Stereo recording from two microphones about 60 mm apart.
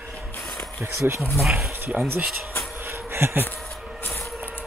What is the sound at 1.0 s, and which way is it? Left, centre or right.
Speech, right.